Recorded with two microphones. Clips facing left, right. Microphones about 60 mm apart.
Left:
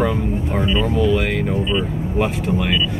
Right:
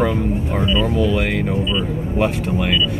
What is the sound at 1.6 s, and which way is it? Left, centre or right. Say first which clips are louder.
Speech: left 1 dB; left.